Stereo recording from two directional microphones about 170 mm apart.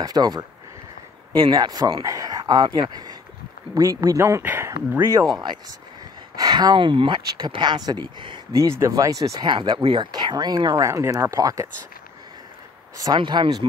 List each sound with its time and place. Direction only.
0.0 s speech: 25° right (ahead or behind)
6.3 s speech: 25° right (ahead or behind)
12.9 s speech: 25° right (ahead or behind)